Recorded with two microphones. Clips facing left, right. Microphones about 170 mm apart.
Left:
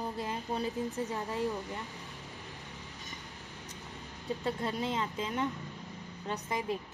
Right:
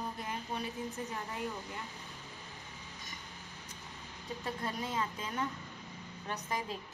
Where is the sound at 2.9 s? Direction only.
40° right (ahead or behind).